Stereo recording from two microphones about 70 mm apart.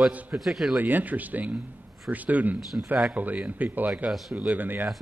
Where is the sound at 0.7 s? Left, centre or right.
Right.